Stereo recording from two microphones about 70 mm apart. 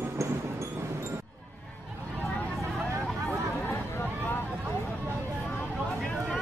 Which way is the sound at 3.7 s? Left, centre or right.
Left.